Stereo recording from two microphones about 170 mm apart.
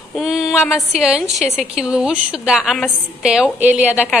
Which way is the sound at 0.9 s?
5° right (ahead or behind).